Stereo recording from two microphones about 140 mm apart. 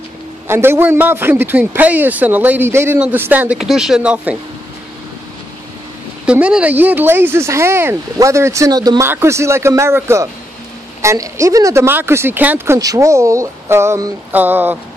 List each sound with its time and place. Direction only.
0.5 s a man's voice: 15° right (ahead or behind)
6.2 s a man's voice: 10° right (ahead or behind)